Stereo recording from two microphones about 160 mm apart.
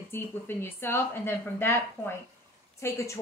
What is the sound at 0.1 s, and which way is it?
Speech, 15° left (ahead or behind).